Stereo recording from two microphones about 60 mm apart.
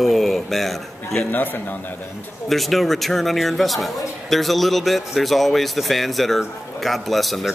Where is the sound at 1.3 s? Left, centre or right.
Left.